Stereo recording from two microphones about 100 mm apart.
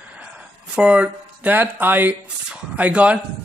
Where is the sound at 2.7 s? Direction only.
15° right (ahead or behind).